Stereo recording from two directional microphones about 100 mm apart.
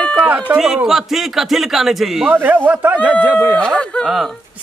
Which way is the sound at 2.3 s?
20° right (ahead or behind).